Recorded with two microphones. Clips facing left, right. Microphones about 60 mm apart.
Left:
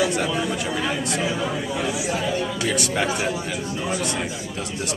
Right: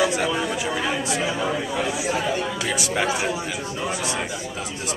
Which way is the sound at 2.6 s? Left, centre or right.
Centre.